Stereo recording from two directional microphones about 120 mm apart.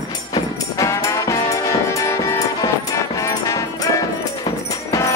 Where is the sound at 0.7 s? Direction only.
25° left (ahead or behind).